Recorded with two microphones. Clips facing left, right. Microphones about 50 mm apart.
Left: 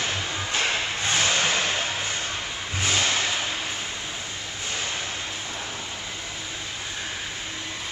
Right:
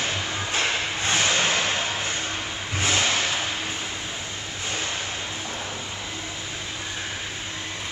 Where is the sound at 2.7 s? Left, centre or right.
Centre.